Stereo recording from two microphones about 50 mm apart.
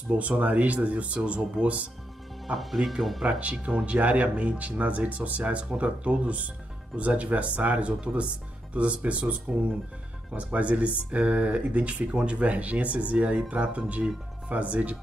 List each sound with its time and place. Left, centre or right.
0.1 s speech: right
2.4 s speech: centre
3.3 s speech: right